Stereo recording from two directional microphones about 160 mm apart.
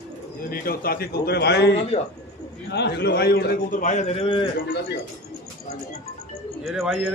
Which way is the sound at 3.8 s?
45° left (ahead or behind).